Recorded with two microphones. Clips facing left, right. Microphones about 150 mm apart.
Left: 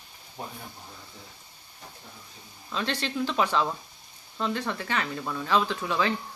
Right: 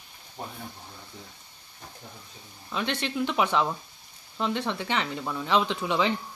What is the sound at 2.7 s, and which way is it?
A woman's voice, 15° right (ahead or behind).